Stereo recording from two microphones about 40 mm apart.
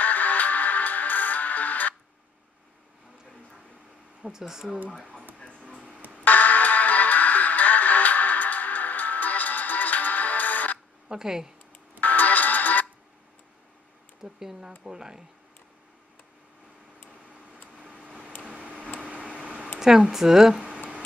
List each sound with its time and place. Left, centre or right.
0.0 s music: left
4.3 s speech: centre
5.6 s a sound: right
6.2 s music: left
11.1 s speech: centre
12.0 s music: left
14.2 s speech: centre
18.4 s a sound: right
19.8 s speech: centre
20.6 s a sound: right